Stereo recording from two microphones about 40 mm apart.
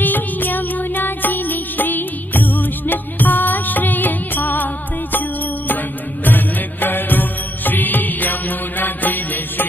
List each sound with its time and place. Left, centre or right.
0.0 s music: left
6.2 s music: left